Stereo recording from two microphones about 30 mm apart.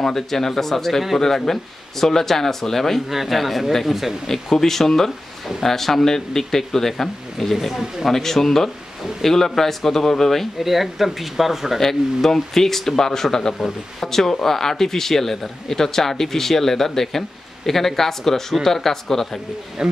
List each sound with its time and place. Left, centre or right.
0.0 s speech: centre
3.1 s speech: centre
4.3 s speech: centre
7.5 s speech: centre
8.1 s speech: centre
10.6 s speech: centre
11.8 s speech: centre
19.8 s speech: right